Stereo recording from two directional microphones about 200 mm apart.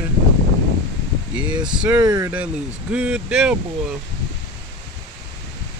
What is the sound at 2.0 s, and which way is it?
Speech, 20° right (ahead or behind).